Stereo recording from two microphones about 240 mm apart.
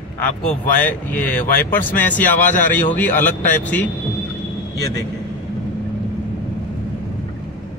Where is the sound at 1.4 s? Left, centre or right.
Left.